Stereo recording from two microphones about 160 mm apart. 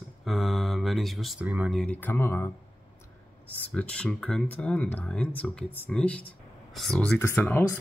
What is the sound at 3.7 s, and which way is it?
Speech, 5° left (ahead or behind).